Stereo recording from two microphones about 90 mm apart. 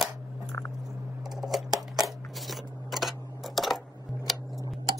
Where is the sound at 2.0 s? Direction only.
Centre (ahead or behind).